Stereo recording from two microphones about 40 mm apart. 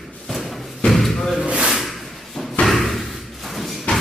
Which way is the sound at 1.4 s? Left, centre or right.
Right.